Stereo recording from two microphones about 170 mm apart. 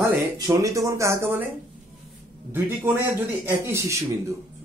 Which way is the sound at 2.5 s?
10° right (ahead or behind).